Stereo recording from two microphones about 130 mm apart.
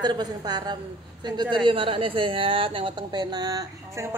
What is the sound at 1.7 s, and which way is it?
A woman's voice, 45° right (ahead or behind).